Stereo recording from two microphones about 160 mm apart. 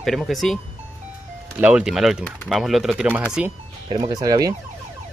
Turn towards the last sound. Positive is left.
turn(degrees=-25)  # may be behind; listen again after turning